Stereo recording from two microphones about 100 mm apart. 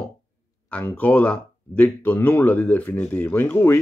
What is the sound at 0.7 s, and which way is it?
A man's voice, 15° left (ahead or behind).